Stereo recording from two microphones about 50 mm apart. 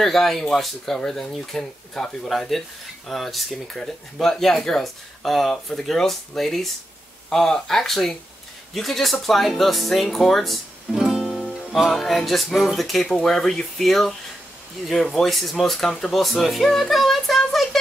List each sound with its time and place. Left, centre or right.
0.0 s speech: centre
11.0 s music: centre
12.7 s speech: centre